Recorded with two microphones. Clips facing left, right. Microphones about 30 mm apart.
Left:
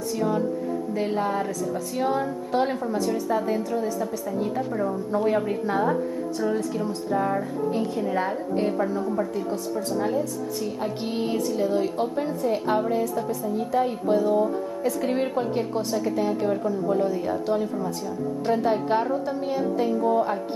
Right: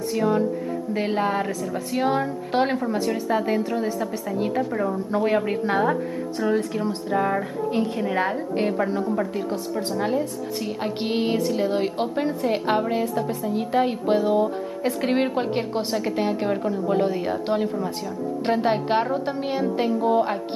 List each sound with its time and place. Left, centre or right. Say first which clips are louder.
0.1 s a woman's voice: right 3 dB; right
7.8 s a woman's voice: right 1 dB; right
8.1 s a woman's voice: right 2 dB; right
8.7 s a woman's voice: right 1 dB; right